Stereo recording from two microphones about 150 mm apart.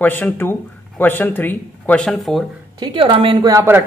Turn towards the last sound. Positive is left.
turn(degrees=-20)  # may be behind; listen again after turning